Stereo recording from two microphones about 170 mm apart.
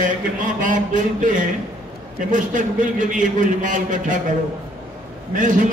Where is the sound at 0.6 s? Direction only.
50° right (ahead or behind).